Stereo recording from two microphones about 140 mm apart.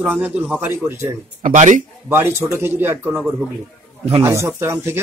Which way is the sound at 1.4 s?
60° right (ahead or behind).